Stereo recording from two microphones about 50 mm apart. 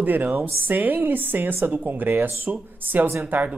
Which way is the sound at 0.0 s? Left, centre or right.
Right.